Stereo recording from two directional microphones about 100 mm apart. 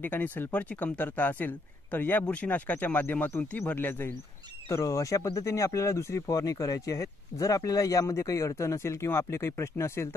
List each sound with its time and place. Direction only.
0.0 s speech: 20° left (ahead or behind)
4.6 s speech: 35° left (ahead or behind)